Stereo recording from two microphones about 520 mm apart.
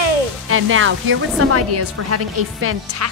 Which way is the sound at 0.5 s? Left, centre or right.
Right.